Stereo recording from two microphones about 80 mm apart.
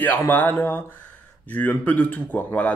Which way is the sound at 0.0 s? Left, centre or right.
Left.